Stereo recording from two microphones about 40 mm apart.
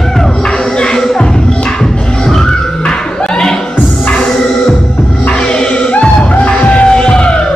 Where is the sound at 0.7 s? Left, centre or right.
Centre.